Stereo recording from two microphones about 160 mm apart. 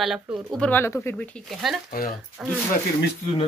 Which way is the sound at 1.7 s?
Centre (ahead or behind).